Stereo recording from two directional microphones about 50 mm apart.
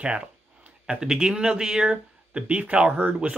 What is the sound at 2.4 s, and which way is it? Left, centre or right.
Speech, right.